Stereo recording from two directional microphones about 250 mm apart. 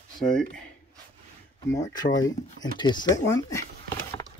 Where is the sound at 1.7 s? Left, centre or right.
Centre.